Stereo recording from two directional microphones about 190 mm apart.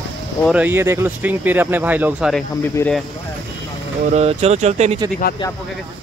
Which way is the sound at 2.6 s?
10° left (ahead or behind).